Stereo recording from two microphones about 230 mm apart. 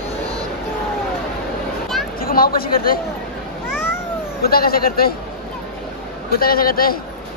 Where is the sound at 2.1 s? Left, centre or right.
Left.